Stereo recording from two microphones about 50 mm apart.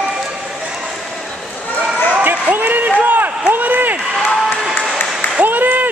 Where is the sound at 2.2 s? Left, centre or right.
Right.